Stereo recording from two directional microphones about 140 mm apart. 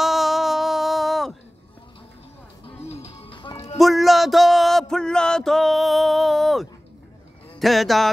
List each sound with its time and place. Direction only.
0.0 s a sound: centre (ahead or behind)
2.6 s music: 45° left (ahead or behind)
3.7 s music: centre (ahead or behind)